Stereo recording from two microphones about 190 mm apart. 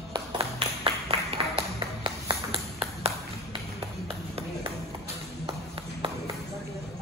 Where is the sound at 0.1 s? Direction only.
30° right (ahead or behind).